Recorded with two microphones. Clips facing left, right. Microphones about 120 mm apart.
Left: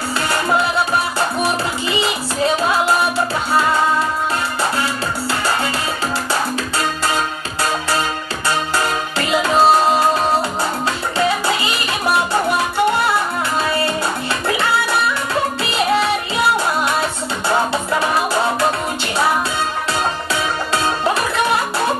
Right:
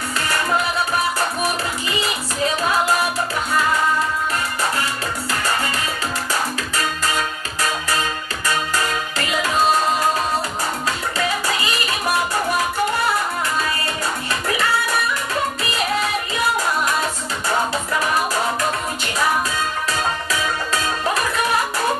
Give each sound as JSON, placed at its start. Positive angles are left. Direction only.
{"t": 1.4, "sound": "music", "side_deg": 30}
{"t": 8.5, "sound": "music", "side_deg": 30}
{"t": 11.1, "sound": "music", "side_deg": 30}
{"t": 15.6, "sound": "music", "side_deg": 30}
{"t": 17.5, "sound": "music", "side_deg": 30}
{"t": 20.7, "sound": "music", "side_deg": 30}